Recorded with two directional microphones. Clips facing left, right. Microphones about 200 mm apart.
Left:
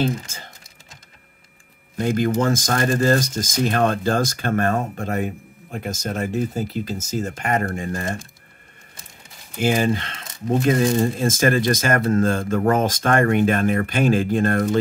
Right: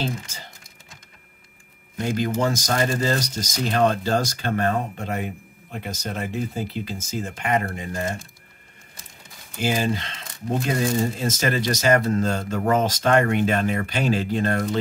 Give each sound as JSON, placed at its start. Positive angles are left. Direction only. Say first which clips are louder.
{"t": 0.0, "sound": "speech", "louder": "left 6 dB", "side_deg": 50}
{"t": 2.1, "sound": "speech", "louder": "left 3 dB", "side_deg": 50}
{"t": 9.6, "sound": "speech", "louder": "left 4 dB", "side_deg": 55}
{"t": 11.1, "sound": "speech", "louder": "left 5 dB", "side_deg": 50}